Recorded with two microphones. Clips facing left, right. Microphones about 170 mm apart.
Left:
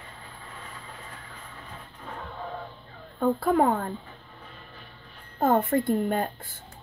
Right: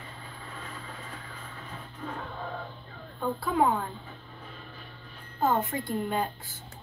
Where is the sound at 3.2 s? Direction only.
50° left (ahead or behind).